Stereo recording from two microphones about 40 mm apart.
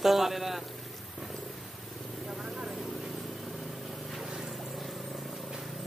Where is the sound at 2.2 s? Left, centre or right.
Right.